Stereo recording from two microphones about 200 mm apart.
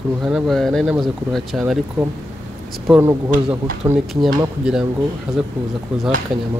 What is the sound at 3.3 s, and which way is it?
Speech, 40° right (ahead or behind).